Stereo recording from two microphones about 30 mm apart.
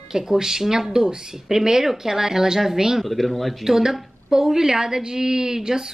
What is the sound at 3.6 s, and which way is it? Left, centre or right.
A woman's voice, centre.